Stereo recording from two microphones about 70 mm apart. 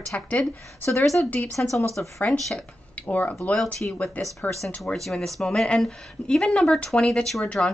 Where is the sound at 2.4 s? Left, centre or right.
Centre.